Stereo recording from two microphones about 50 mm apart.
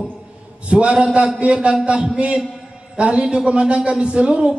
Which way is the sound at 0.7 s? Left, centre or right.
Right.